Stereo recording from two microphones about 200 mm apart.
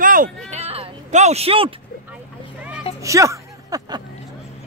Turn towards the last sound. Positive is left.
turn(degrees=-20)  # may be behind; listen again after turning